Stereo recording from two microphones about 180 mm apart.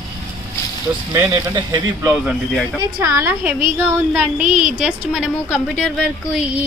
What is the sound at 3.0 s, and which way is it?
A woman's voice, 15° right (ahead or behind).